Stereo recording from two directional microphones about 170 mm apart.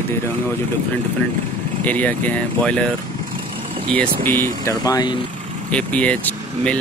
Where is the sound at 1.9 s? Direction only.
10° left (ahead or behind).